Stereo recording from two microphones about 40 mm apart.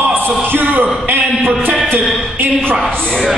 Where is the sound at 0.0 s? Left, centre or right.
Right.